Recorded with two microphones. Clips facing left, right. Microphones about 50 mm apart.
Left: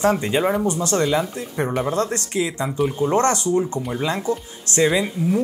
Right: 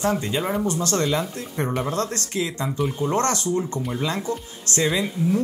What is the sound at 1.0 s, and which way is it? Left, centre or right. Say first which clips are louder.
Speech: left 3 dB; centre.